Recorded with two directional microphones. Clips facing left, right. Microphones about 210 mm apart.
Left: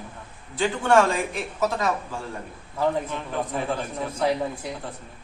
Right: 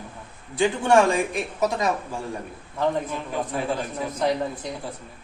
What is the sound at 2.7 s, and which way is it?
A woman's voice, centre (ahead or behind).